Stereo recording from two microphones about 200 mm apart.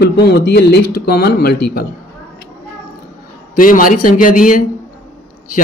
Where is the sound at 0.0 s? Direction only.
55° left (ahead or behind).